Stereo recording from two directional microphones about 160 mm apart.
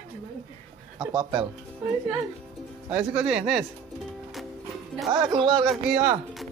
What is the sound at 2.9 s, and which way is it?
Speech, 5° right (ahead or behind).